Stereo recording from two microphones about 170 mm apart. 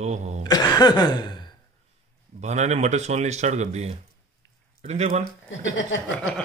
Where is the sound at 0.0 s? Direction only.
40° right (ahead or behind).